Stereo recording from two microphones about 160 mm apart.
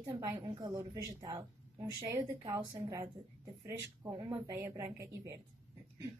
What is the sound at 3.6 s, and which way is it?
A woman's voice, 15° right (ahead or behind).